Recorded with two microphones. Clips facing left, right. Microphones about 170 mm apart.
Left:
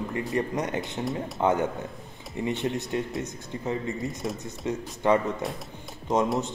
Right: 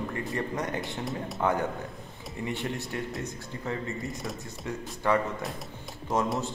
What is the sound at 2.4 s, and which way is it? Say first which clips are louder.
Speech: left 5 dB; 20° left (ahead or behind).